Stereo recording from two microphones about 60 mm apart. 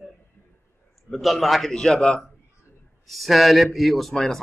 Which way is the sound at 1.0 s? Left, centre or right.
Centre.